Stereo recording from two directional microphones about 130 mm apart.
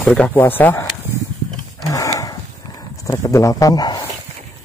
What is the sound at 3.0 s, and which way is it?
Speech, 25° left (ahead or behind).